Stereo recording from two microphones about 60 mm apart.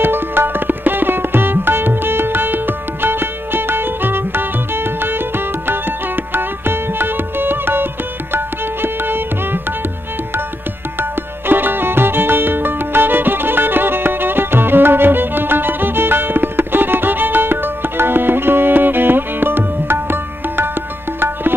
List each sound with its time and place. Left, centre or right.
0.0 s tabla: right
11.0 s music: right